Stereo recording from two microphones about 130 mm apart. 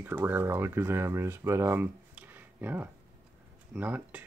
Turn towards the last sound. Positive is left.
turn(degrees=-10)  # may be behind; listen again after turning